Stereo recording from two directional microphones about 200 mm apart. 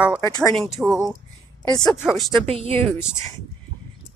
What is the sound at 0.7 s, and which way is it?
Speech, centre (ahead or behind).